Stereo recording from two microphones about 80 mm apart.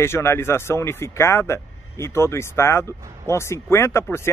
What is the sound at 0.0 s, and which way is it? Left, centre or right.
Speech, left.